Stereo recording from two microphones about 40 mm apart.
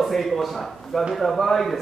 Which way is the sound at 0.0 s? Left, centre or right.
Centre.